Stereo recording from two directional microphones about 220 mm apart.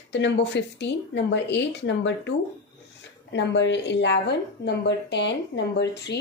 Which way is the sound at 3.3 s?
55° left (ahead or behind).